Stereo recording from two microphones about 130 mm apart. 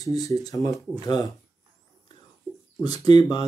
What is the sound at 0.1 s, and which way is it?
Speech, 30° left (ahead or behind).